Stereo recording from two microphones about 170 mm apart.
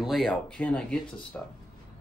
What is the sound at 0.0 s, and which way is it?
Speech, centre (ahead or behind).